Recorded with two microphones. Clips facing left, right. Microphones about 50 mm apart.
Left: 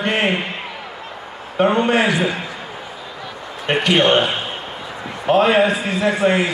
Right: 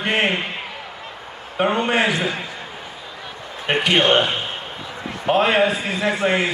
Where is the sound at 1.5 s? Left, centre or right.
Centre.